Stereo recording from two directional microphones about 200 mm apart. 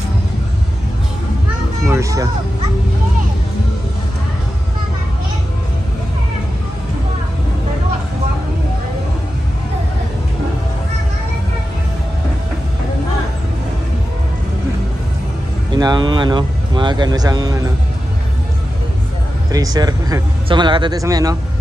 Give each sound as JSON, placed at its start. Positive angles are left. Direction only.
{"t": 1.9, "sound": "speech", "side_deg": -15}
{"t": 15.7, "sound": "speech", "side_deg": -20}
{"t": 19.5, "sound": "speech", "side_deg": -20}